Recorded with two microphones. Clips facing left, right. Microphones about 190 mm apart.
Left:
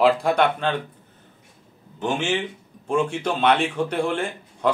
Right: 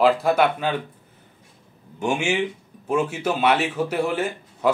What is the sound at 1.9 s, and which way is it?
A man's voice, 10° right (ahead or behind).